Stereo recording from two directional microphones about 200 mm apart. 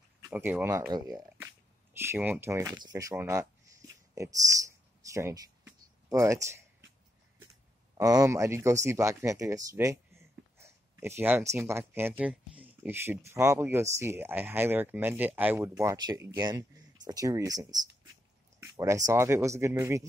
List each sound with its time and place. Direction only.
0.2 s speech: 10° right (ahead or behind)
8.0 s speech: 20° right (ahead or behind)